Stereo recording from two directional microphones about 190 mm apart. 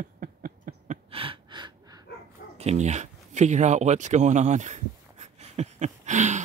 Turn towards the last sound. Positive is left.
turn(degrees=-40)  # may be behind; listen again after turning